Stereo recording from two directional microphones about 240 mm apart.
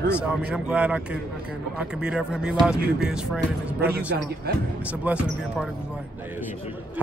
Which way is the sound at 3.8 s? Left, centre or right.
Right.